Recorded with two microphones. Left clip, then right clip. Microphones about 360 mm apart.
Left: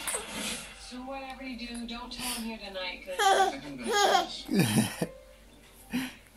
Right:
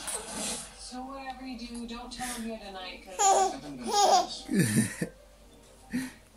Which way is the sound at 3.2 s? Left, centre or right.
Centre.